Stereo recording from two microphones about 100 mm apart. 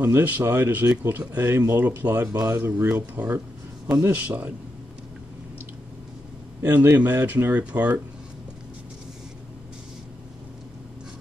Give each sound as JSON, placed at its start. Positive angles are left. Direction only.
{"t": 0.0, "sound": "speech", "side_deg": -20}
{"t": 6.6, "sound": "speech", "side_deg": -20}